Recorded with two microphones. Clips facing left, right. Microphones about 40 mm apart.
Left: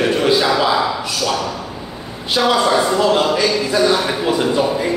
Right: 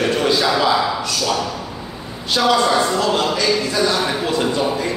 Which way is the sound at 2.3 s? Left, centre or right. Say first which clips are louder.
Left 1 dB; centre.